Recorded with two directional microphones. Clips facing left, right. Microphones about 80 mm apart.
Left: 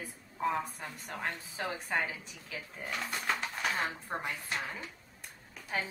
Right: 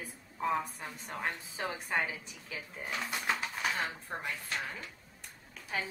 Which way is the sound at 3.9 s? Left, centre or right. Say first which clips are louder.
Left 2 dB; left.